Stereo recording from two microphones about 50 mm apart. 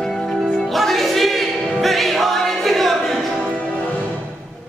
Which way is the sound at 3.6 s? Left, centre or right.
Left.